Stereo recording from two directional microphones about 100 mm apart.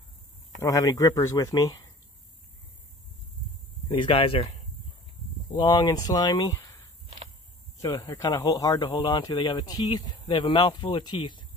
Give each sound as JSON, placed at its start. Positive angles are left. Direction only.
{"t": 0.6, "sound": "speech", "side_deg": 35}
{"t": 3.9, "sound": "speech", "side_deg": 60}
{"t": 5.6, "sound": "speech", "side_deg": 45}
{"t": 7.8, "sound": "speech", "side_deg": 35}